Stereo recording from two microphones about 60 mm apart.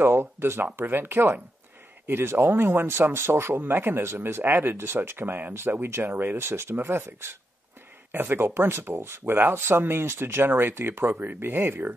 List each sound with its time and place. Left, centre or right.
0.0 s speech: right